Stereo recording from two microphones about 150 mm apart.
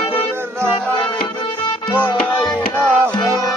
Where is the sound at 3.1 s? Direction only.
25° left (ahead or behind).